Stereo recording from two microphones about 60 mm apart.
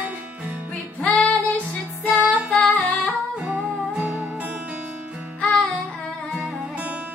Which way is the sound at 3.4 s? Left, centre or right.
Right.